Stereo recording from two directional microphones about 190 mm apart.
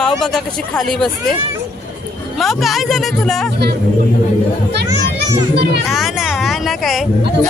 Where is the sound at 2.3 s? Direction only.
Centre (ahead or behind).